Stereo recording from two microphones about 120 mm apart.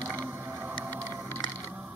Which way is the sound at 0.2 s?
15° right (ahead or behind).